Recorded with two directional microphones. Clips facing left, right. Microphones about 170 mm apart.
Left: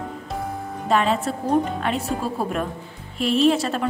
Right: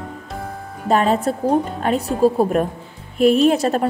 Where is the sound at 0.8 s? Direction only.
45° right (ahead or behind).